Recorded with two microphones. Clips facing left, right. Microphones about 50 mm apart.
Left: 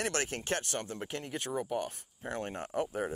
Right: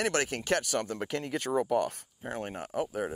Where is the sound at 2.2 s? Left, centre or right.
Centre.